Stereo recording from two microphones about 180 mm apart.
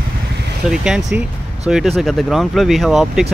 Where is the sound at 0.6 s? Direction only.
5° right (ahead or behind).